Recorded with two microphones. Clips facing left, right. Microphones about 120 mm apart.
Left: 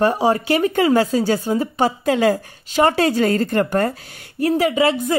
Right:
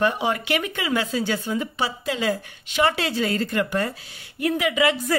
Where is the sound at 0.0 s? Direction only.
40° left (ahead or behind).